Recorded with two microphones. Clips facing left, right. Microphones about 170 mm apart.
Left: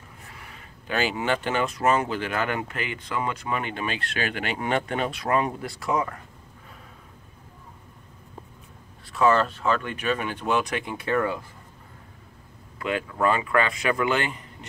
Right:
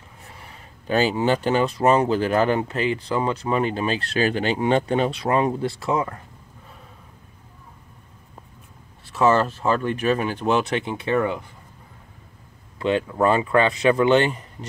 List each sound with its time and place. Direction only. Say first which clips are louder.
0.8 s speech: right 6 dB; 35° right (ahead or behind)
9.2 s speech: right 2 dB; 30° right (ahead or behind)
12.7 s speech: right 6 dB; 30° right (ahead or behind)